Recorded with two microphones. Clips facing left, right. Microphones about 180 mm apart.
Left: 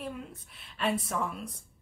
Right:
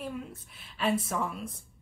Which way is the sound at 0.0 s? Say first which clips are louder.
Right 2 dB; centre (ahead or behind).